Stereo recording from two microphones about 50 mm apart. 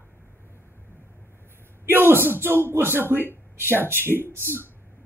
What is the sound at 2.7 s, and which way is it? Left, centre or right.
A woman's voice, right.